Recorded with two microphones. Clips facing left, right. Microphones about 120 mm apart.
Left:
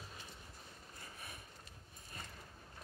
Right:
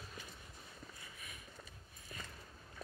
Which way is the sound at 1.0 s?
40° left (ahead or behind).